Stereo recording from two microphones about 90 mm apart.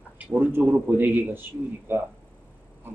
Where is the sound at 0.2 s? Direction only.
20° right (ahead or behind).